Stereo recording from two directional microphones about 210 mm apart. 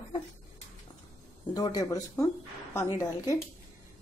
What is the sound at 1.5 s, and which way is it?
A woman's voice, 15° left (ahead or behind).